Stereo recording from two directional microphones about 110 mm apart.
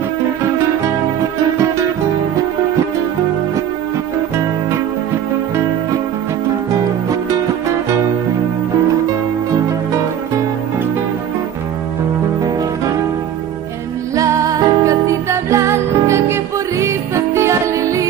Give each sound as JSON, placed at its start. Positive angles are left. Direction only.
{"t": 14.1, "sound": "music", "side_deg": -30}